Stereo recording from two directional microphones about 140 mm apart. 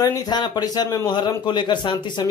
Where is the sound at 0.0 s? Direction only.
30° left (ahead or behind).